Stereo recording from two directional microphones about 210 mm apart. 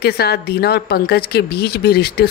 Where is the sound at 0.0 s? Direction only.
50° left (ahead or behind).